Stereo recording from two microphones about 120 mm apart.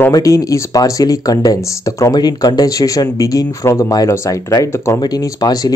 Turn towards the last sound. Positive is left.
turn(degrees=30)  # may be behind; listen again after turning